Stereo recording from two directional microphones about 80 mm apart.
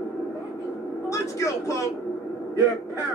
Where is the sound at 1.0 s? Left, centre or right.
Left.